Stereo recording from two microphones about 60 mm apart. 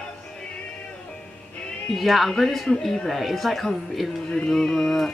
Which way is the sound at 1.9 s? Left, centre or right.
Centre.